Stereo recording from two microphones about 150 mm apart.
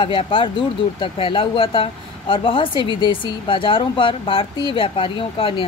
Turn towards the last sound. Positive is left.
turn(degrees=35)  # may be behind; listen again after turning